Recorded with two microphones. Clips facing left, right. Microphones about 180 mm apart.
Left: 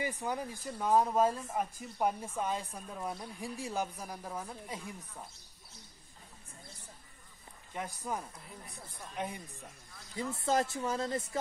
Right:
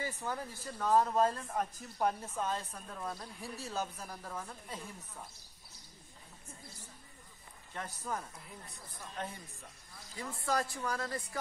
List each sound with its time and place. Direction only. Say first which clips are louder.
0.0 s speech: left 3 dB; 15° left (ahead or behind)
7.7 s speech: left 2 dB; 10° left (ahead or behind)